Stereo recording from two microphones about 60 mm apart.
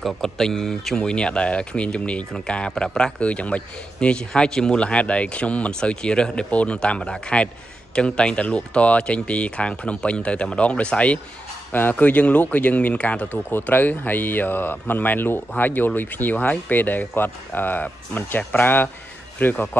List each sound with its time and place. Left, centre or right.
0.0 s speech: centre; by 19.8 s left